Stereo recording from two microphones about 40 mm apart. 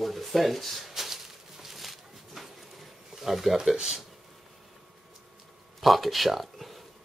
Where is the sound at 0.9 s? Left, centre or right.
Centre.